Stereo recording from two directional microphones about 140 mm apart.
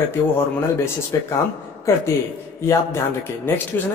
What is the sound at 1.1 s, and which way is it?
A man's voice, 25° left (ahead or behind).